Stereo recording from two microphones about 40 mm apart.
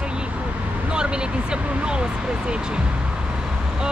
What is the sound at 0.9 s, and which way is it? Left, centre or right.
Speech, right.